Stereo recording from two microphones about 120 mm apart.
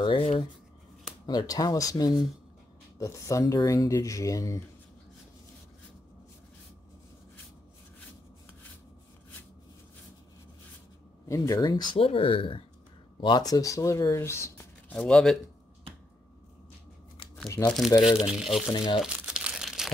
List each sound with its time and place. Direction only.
0.0 s a sound: 45° left (ahead or behind)
1.2 s speech: 35° left (ahead or behind)
11.2 s speech: 25° left (ahead or behind)
12.0 s speech: 50° left (ahead or behind)
13.2 s speech: 35° left (ahead or behind); by 15.0 s 20° left (ahead or behind)
15.0 s speech: 5° left (ahead or behind)
17.6 s speech: 20° left (ahead or behind)
18.0 s speech: 5° right (ahead or behind)
18.7 s speech: 35° left (ahead or behind)
18.9 s crumpling: 5° right (ahead or behind)